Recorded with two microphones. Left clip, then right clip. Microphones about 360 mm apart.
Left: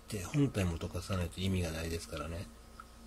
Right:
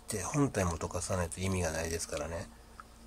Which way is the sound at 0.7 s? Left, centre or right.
Right.